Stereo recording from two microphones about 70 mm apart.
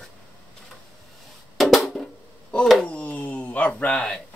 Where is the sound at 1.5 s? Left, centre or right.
Centre.